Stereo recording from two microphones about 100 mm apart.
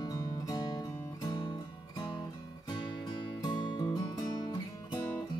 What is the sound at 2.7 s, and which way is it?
Music, 45° left (ahead or behind).